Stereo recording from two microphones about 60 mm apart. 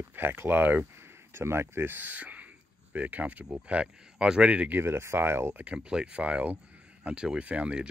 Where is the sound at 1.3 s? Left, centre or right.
Right.